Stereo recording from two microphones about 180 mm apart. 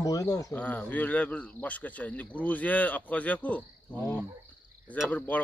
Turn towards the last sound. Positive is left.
turn(degrees=10)  # may be behind; listen again after turning